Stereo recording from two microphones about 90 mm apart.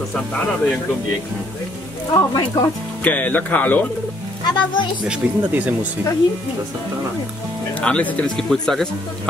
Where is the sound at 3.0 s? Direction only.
20° left (ahead or behind).